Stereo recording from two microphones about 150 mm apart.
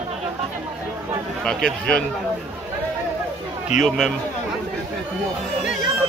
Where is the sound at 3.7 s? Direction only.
50° left (ahead or behind).